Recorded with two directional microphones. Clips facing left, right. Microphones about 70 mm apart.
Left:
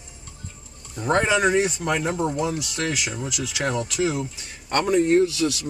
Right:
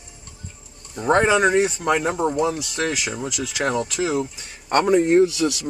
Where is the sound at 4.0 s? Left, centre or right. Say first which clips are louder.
Even; centre.